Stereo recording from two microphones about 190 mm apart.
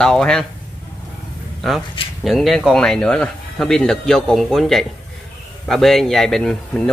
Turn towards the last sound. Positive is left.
turn(degrees=5)  # may be behind; listen again after turning